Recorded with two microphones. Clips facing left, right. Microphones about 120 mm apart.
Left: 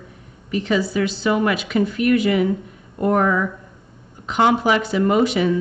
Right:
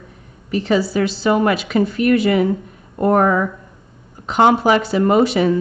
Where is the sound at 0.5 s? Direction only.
35° right (ahead or behind).